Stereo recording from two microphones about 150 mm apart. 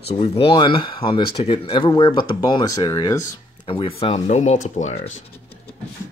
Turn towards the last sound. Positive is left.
turn(degrees=40)  # may be behind; listen again after turning